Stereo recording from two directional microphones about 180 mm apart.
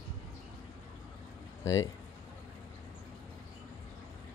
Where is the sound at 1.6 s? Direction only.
20° left (ahead or behind).